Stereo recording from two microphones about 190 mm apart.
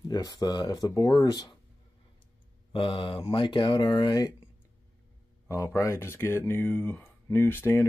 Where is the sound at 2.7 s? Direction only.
25° left (ahead or behind).